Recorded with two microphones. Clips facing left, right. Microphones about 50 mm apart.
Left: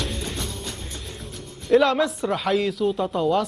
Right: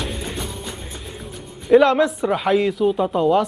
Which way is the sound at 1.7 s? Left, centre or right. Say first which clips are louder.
Right 4 dB; centre.